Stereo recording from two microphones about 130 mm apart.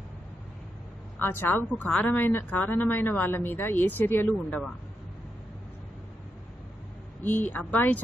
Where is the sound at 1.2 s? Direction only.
15° left (ahead or behind).